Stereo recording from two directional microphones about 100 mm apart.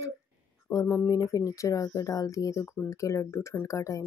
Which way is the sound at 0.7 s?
30° left (ahead or behind).